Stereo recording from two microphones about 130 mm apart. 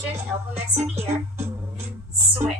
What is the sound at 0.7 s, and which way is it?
Music, 55° right (ahead or behind).